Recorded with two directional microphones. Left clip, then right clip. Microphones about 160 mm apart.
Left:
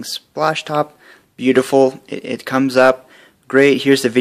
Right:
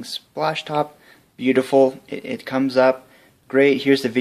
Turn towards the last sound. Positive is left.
turn(degrees=40)  # may be behind; listen again after turning